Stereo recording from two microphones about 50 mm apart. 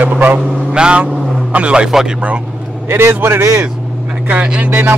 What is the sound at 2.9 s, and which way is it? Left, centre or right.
Speech, right.